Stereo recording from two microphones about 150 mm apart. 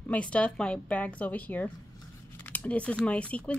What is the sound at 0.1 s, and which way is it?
Speech, 10° left (ahead or behind).